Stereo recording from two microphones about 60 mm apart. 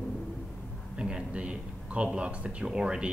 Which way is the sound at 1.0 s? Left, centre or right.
Centre.